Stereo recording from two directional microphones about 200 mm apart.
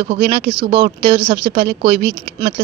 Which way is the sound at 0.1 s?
30° right (ahead or behind).